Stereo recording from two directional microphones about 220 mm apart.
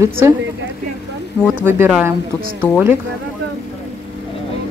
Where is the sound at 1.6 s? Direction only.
10° right (ahead or behind).